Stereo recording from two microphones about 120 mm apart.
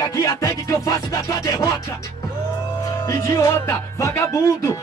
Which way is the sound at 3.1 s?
25° left (ahead or behind).